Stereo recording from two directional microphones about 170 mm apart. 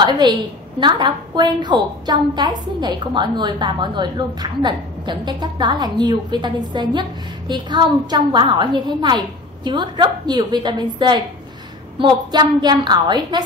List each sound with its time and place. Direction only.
0.0 s a woman's voice: 25° right (ahead or behind)